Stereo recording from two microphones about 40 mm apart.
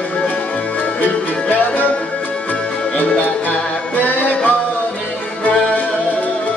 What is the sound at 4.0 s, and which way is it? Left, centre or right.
Music, left.